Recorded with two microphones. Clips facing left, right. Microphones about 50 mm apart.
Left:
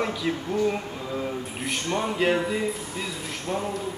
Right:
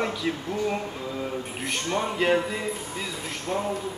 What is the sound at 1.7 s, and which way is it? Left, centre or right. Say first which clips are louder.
Speech: even; centre.